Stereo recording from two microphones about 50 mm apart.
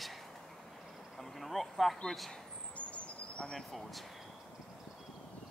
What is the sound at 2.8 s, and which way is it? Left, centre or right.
Vehicle, left.